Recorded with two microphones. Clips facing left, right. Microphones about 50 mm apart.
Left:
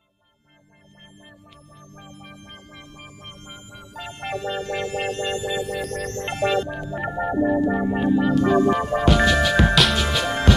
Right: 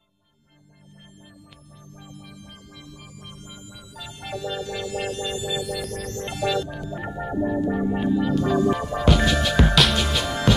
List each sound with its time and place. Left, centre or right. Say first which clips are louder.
2.0 s music: left 1 dB; left
9.0 s music: left 2 dB; centre